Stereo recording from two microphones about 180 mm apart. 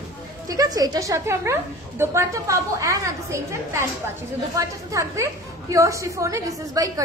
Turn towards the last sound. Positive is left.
turn(degrees=-20)  # may be behind; listen again after turning